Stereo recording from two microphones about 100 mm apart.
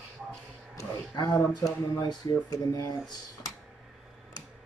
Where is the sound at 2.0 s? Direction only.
45° left (ahead or behind).